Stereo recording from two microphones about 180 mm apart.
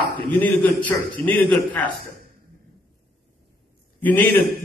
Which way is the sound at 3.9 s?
10° left (ahead or behind).